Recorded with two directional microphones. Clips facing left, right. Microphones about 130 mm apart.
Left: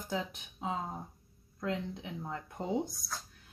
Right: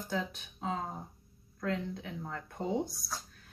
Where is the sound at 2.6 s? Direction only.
15° right (ahead or behind).